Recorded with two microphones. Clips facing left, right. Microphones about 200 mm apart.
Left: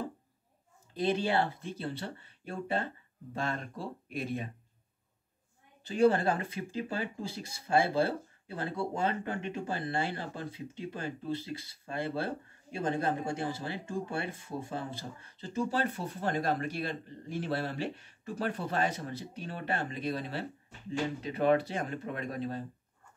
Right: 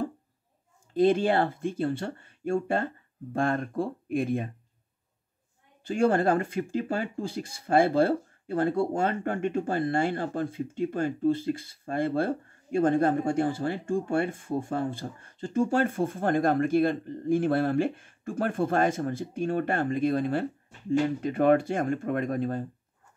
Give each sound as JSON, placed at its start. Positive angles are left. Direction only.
{"t": 0.9, "sound": "speech", "side_deg": -50}
{"t": 5.9, "sound": "speech", "side_deg": -50}